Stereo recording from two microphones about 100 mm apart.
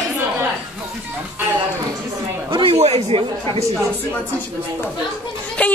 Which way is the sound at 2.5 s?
80° right.